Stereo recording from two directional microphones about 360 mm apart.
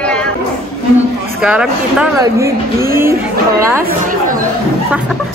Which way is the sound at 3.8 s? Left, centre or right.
Right.